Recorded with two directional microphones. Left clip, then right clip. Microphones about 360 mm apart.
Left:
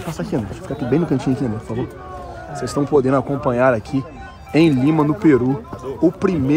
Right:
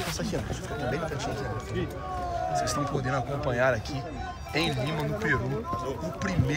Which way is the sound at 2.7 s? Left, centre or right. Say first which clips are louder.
Left 13 dB; centre.